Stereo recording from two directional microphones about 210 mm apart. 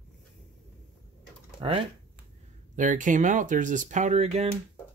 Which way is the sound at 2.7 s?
35° right (ahead or behind).